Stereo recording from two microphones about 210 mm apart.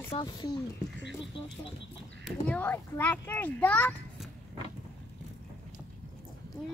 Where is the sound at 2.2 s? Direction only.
5° left (ahead or behind).